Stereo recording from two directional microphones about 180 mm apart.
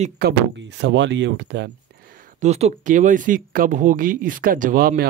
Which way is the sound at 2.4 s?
40° right (ahead or behind).